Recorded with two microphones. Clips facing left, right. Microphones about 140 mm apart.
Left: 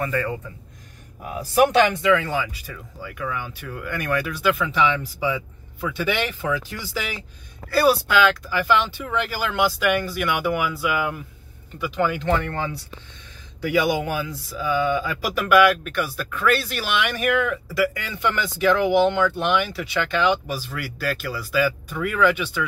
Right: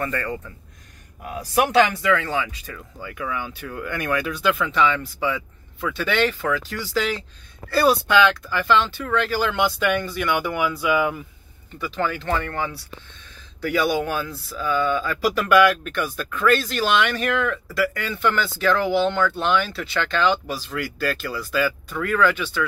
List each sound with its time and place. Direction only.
0.0 s speech: 5° left (ahead or behind)
2.0 s speech: 15° left (ahead or behind)
11.8 s speech: 10° left (ahead or behind)